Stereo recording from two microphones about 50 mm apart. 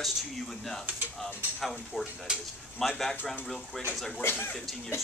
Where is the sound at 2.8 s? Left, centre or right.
Centre.